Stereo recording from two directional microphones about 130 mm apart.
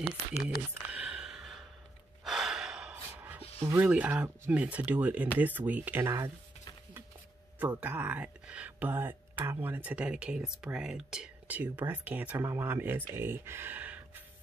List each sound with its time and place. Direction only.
0.8 s a sound: 10° right (ahead or behind)
2.2 s gasp: 5° right (ahead or behind)
3.7 s speech: 10° right (ahead or behind)
7.5 s speech: 15° right (ahead or behind)